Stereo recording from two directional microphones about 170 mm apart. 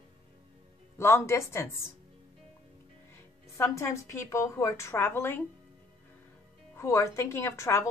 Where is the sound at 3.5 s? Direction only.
15° left (ahead or behind).